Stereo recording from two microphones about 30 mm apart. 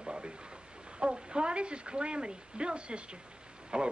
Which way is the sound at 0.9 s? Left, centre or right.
Right.